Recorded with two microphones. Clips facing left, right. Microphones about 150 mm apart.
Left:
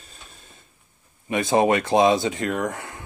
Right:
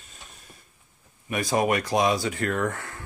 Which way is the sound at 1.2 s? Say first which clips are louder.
Left 5 dB; 25° left (ahead or behind).